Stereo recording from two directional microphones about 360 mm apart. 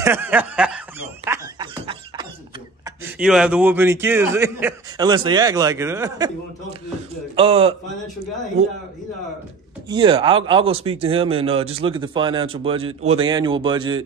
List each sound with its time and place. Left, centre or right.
0.0 s snicker: centre
2.8 s a man's voice: centre
7.3 s a man's voice: centre
9.8 s a man's voice: centre